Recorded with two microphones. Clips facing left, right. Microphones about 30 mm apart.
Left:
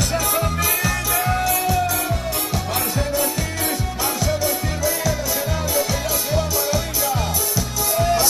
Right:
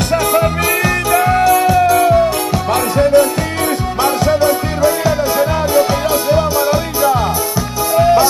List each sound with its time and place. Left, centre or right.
0.3 s music: right
0.8 s music: right
1.6 s music: right
4.4 s music: right